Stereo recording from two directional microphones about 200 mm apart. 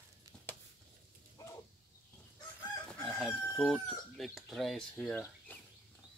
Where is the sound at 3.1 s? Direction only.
Centre (ahead or behind).